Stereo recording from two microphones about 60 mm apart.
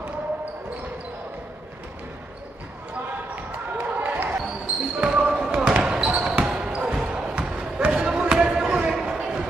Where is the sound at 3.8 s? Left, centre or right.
Right.